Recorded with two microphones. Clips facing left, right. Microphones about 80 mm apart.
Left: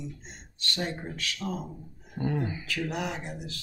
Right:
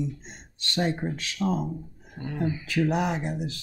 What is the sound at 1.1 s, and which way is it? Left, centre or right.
Speech, right.